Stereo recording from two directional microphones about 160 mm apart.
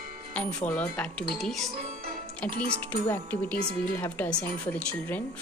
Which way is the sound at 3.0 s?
10° left (ahead or behind).